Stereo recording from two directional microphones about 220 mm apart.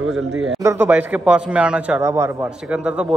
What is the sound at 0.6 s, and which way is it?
A man's voice, 10° right (ahead or behind).